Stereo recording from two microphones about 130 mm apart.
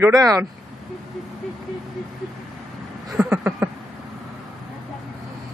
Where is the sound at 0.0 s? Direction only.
30° right (ahead or behind).